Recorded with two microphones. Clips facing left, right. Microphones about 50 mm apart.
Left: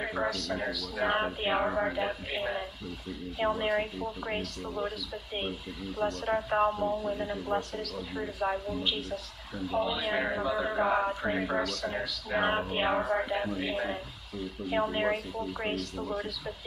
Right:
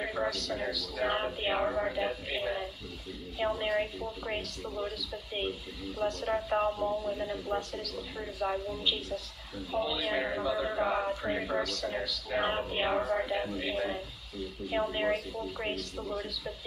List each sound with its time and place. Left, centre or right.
0.0 s a sound: centre
0.6 s speech: left
6.2 s a man's voice: centre
6.6 s speech: left
10.0 s a man's voice: centre